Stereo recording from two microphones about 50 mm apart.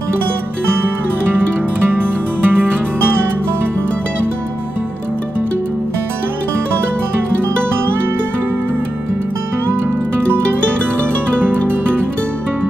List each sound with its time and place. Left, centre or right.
1.9 s music: right
11.4 s music: right